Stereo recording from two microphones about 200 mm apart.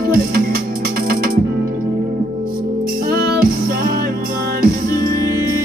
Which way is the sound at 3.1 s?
50° right (ahead or behind).